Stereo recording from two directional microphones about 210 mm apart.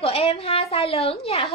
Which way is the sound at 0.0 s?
30° left (ahead or behind).